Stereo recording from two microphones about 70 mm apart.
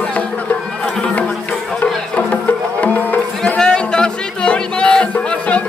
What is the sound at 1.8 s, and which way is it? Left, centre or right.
Music, left.